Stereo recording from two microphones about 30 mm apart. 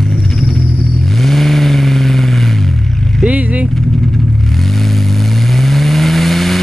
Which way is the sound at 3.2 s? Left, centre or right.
Right.